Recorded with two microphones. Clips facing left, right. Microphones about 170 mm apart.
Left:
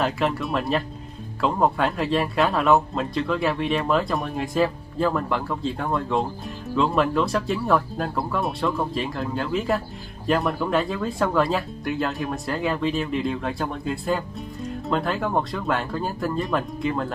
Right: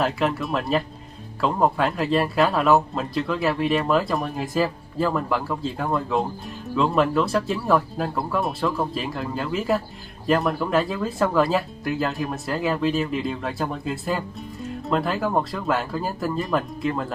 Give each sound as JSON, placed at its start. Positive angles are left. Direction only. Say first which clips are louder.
{"t": 0.0, "sound": "speech", "louder": "right 1 dB", "side_deg": 0}